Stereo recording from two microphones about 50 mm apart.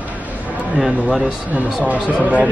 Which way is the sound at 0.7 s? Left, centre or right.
Centre.